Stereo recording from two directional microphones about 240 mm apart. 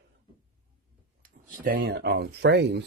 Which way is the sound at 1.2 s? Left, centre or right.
Right.